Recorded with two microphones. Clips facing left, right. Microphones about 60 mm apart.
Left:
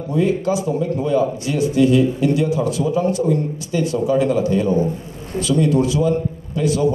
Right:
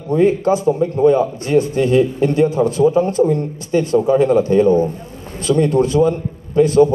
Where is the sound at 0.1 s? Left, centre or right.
Right.